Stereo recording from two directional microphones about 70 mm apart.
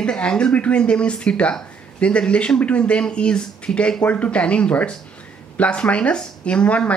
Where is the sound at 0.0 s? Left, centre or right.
Centre.